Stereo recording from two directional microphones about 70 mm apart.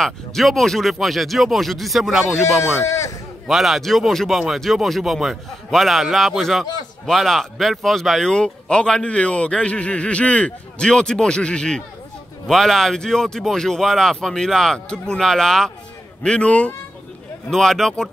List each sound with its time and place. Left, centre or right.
0.0 s a man's voice: centre
2.6 s speech: left
3.4 s a man's voice: centre
17.5 s a man's voice: centre